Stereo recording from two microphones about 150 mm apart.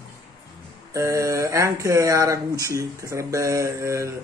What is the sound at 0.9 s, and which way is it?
Speech, 20° right (ahead or behind).